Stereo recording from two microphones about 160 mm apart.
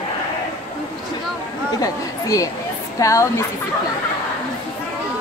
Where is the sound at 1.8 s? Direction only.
20° left (ahead or behind).